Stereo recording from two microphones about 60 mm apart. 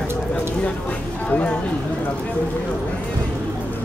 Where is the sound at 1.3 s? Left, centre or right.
Centre.